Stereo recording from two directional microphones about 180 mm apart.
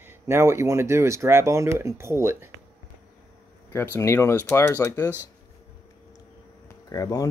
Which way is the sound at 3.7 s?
10° left (ahead or behind).